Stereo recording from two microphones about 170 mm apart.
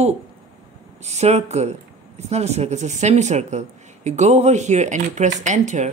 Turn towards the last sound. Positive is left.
turn(degrees=-45)  # may be behind; listen again after turning